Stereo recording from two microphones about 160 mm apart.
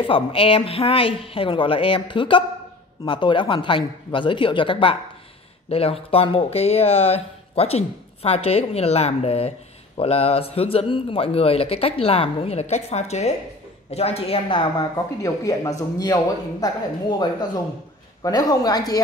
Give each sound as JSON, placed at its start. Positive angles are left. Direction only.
{"t": 0.0, "sound": "speech", "side_deg": 35}
{"t": 15.2, "sound": "a man's voice", "side_deg": 20}
{"t": 18.2, "sound": "a man's voice", "side_deg": 25}